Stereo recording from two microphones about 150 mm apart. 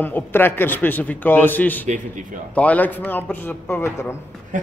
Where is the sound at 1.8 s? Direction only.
55° right (ahead or behind).